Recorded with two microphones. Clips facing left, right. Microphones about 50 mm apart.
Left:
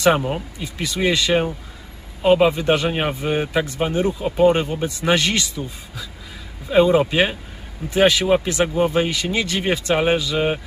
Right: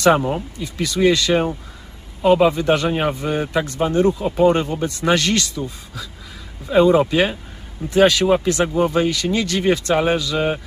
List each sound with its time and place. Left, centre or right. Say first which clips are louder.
0.3 s speech: right 2 dB; centre
6.7 s speech: right 1 dB; centre